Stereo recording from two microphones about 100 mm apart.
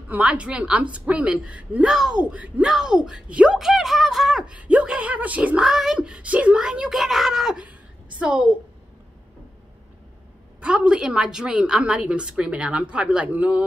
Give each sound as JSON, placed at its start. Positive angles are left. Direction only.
{"t": 0.1, "sound": "a woman's voice", "side_deg": -15}
{"t": 10.6, "sound": "a woman's voice", "side_deg": -10}